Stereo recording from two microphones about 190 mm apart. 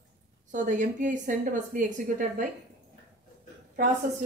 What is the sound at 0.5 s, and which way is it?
A woman's voice, 40° right (ahead or behind).